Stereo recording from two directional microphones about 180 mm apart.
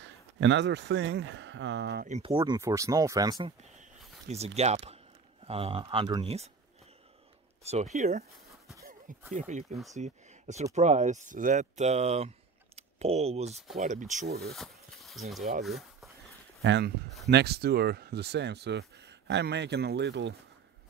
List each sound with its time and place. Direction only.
0.0 s speech: 90° right
2.0 s speech: 40° right (ahead or behind)
2.3 s speech: 20° right (ahead or behind)
4.6 s speech: 40° right (ahead or behind)
7.6 s speech: 40° right (ahead or behind)
9.3 s speech: 40° right (ahead or behind)
14.2 s speech: 60° right (ahead or behind)
14.5 s speech: centre (ahead or behind)
15.6 s a sound: centre (ahead or behind)
16.6 s speech: 75° right (ahead or behind)
17.3 s speech: 65° right (ahead or behind)